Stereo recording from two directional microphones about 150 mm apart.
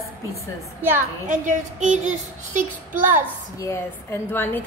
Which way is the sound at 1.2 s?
55° right (ahead or behind).